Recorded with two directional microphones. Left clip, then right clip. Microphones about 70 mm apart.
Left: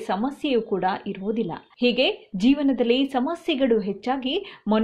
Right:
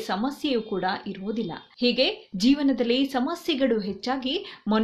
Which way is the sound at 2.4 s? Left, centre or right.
Left.